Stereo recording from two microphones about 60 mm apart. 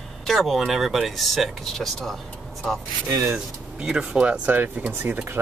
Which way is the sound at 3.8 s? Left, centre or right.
Centre.